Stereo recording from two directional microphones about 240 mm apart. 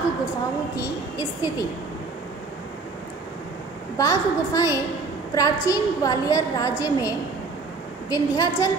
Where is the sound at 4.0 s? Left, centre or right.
Centre.